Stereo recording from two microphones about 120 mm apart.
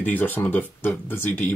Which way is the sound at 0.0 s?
15° left (ahead or behind).